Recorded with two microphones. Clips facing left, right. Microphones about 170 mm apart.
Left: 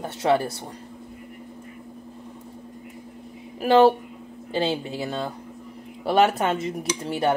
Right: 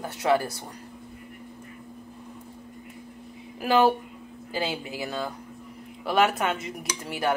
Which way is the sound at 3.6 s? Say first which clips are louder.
Left 5 dB; 30° left (ahead or behind).